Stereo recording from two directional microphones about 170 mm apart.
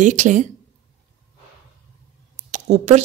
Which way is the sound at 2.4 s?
40° right (ahead or behind).